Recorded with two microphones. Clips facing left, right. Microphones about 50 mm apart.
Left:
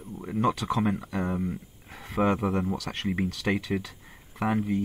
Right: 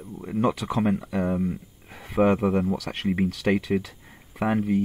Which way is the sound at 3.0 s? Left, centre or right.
Centre.